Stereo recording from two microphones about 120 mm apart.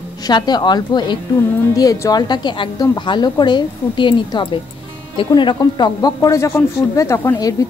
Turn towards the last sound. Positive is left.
turn(degrees=25)  # may be behind; listen again after turning